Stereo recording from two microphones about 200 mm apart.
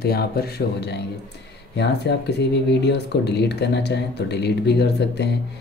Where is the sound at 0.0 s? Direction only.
50° left (ahead or behind).